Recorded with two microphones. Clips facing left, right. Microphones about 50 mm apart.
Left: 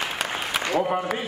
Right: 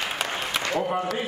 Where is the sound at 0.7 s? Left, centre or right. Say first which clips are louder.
Left 3 dB; centre.